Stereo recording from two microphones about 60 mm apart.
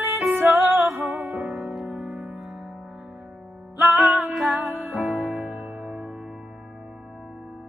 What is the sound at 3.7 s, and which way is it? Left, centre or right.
Music, right.